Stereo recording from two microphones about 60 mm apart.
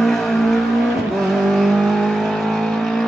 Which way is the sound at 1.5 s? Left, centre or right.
Centre.